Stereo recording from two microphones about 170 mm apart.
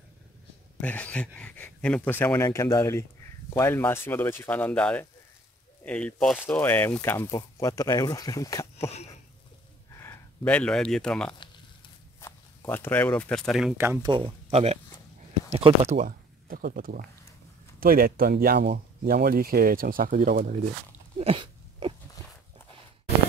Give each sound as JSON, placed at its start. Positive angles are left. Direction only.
{"t": 0.7, "sound": "speech", "side_deg": 10}
{"t": 8.7, "sound": "a sound", "side_deg": 40}
{"t": 9.9, "sound": "speech", "side_deg": 10}
{"t": 12.2, "sound": "walk", "side_deg": 15}
{"t": 12.6, "sound": "speech", "side_deg": 15}
{"t": 14.0, "sound": "speech", "side_deg": -30}
{"t": 16.1, "sound": "speech", "side_deg": -60}
{"t": 21.2, "sound": "a sound", "side_deg": -30}